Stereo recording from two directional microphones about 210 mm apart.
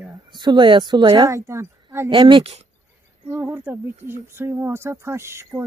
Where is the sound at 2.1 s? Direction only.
25° right (ahead or behind).